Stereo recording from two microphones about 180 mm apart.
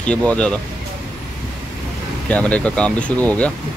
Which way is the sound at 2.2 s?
5° left (ahead or behind).